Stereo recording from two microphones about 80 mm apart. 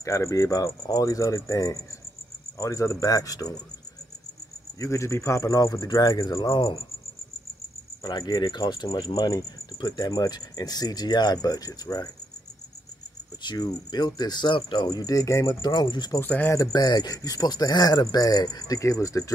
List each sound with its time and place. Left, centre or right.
0.0 s speech: left
4.7 s speech: left
5.9 s speech: left
8.0 s cricket: left
13.4 s speech: left
14.9 s speech: left
15.6 s cricket: left
16.7 s speech: left